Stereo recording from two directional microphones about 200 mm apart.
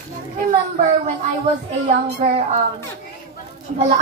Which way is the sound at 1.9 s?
40° right (ahead or behind).